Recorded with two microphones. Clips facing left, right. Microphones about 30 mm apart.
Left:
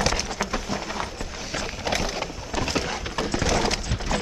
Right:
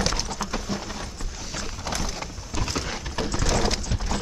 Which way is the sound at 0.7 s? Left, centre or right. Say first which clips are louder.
Left 4 dB; left.